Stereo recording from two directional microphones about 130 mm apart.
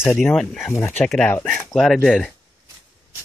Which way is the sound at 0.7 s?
20° left (ahead or behind).